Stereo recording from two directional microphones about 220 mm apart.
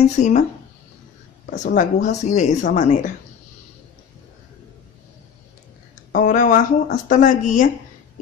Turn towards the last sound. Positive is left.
turn(degrees=35)  # may be behind; listen again after turning